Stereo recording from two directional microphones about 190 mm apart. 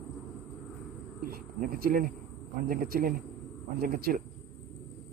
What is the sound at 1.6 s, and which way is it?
Speech, 50° right (ahead or behind).